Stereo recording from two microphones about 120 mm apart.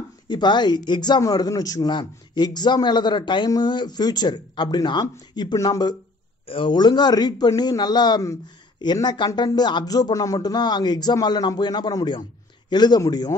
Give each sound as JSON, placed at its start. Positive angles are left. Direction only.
{"t": 0.3, "sound": "a man's voice", "side_deg": 40}